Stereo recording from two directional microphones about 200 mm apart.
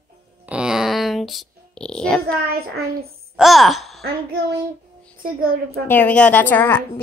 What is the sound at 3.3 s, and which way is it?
Speech, centre (ahead or behind).